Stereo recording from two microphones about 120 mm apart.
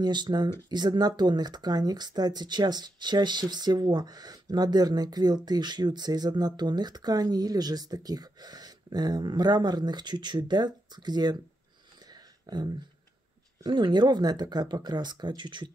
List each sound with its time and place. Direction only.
0.0 s speech: 40° right (ahead or behind)
12.1 s a sound: 35° right (ahead or behind)
13.6 s speech: 35° right (ahead or behind)